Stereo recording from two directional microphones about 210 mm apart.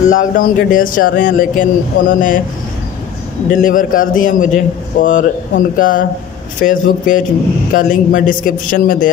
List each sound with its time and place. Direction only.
0.0 s speech: 40° left (ahead or behind)
3.4 s speech: 40° left (ahead or behind)